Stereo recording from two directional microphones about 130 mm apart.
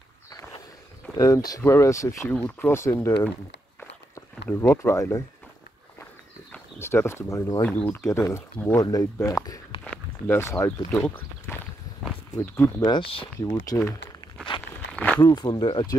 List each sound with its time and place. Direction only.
1.1 s speech: 30° left (ahead or behind)
4.5 s speech: 15° left (ahead or behind)
6.8 s speech: 20° left (ahead or behind)
7.6 s speech: 15° left (ahead or behind)
9.8 s a sound: 15° left (ahead or behind)
12.4 s speech: 20° left (ahead or behind)
12.9 s speech: 45° left (ahead or behind)
13.7 s speech: 25° left (ahead or behind)
14.9 s walk: 10° left (ahead or behind)
15.1 s speech: 35° left (ahead or behind)